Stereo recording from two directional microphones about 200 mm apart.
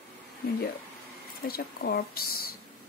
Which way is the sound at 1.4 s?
50° left (ahead or behind).